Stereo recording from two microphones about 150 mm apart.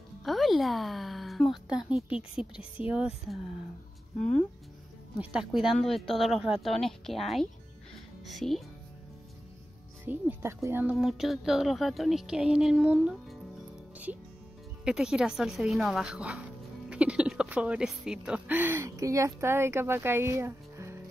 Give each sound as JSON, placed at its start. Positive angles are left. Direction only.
{"t": 0.2, "sound": "speech", "side_deg": 0}
{"t": 5.2, "sound": "speech", "side_deg": -5}
{"t": 10.0, "sound": "speech", "side_deg": -15}
{"t": 14.9, "sound": "speech", "side_deg": -5}